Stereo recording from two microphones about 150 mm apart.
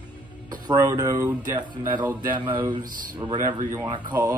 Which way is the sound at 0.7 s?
20° right (ahead or behind).